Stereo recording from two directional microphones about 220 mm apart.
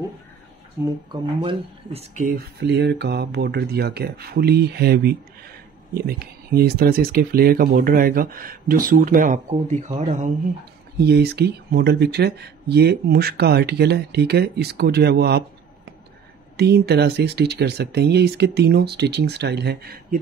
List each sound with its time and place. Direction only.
0.8 s speech: 10° right (ahead or behind)
1.4 s speech: 25° right (ahead or behind)
11.0 s speech: 50° right (ahead or behind)
16.5 s speech: 50° right (ahead or behind)